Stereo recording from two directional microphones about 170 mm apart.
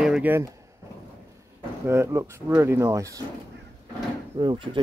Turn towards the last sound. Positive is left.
turn(degrees=-25)  # may be behind; listen again after turning